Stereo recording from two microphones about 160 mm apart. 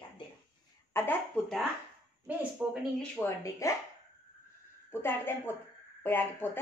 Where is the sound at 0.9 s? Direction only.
10° left (ahead or behind).